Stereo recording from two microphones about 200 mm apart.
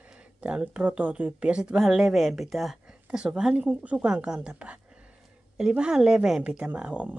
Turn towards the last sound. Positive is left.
turn(degrees=-5)  # may be behind; listen again after turning